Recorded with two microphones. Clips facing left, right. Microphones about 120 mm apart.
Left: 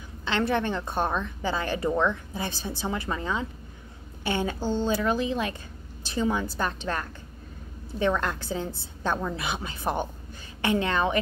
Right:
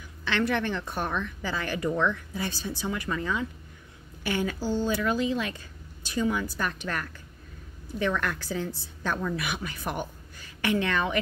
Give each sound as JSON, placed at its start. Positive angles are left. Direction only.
{"t": 0.2, "sound": "a woman's voice", "side_deg": 25}